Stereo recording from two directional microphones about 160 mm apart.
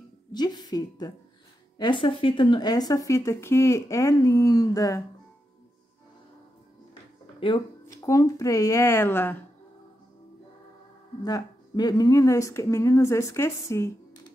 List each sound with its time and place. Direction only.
0.3 s speech: 25° left (ahead or behind)
7.3 s speech: 30° left (ahead or behind)
7.8 s speech: 20° left (ahead or behind)
11.2 s speech: 25° left (ahead or behind)